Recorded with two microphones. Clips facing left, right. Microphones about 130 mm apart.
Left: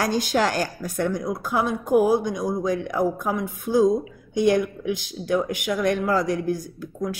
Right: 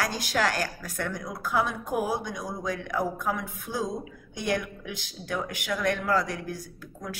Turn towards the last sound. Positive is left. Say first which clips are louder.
# left 10 dB
turn(degrees=20)  # may be behind; listen again after turning